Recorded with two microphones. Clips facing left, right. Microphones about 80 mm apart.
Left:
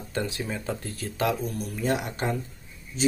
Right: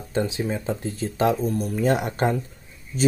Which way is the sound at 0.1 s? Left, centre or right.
Right.